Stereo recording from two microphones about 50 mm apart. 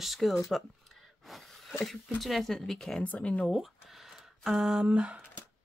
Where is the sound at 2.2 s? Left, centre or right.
Centre.